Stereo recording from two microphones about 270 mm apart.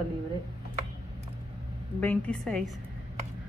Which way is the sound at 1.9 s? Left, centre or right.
Centre.